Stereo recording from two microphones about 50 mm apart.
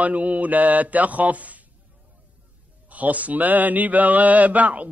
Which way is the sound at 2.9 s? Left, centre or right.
Right.